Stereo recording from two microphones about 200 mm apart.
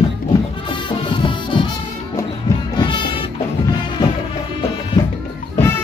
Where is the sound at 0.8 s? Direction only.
25° left (ahead or behind).